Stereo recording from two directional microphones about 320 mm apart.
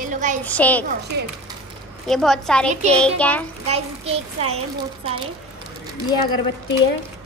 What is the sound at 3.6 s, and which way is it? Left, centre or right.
Speech, centre.